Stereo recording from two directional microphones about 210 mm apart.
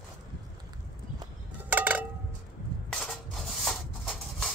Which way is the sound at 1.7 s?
10° right (ahead or behind).